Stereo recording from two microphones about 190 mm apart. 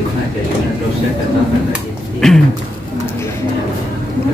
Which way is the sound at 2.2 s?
Centre (ahead or behind).